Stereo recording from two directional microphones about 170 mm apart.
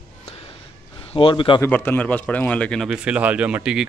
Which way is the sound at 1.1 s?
30° left (ahead or behind).